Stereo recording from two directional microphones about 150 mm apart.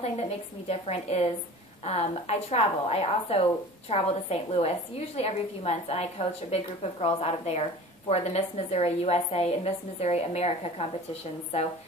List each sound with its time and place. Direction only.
0.0 s a woman's voice: 45° left (ahead or behind)